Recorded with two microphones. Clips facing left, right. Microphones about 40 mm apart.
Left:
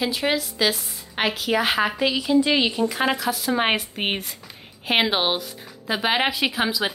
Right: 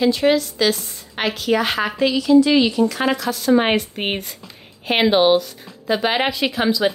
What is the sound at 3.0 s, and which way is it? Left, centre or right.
A woman's voice, centre.